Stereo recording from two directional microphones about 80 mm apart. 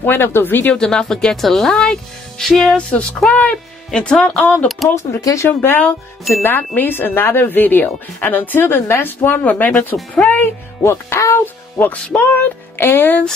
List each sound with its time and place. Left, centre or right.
0.0 s speech: left
0.7 s a woman's voice: centre
2.9 s a woman's voice: centre
5.2 s speech: left
5.6 s speech: left
10.9 s speech: left
11.4 s speech: left